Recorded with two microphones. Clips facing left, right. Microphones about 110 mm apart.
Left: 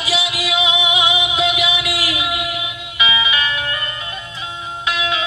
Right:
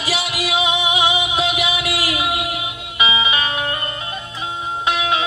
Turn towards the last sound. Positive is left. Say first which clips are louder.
# right 2 dB
turn(degrees=-35)  # may be behind; listen again after turning